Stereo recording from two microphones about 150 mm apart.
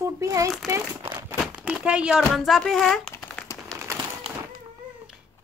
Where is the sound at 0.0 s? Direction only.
20° right (ahead or behind).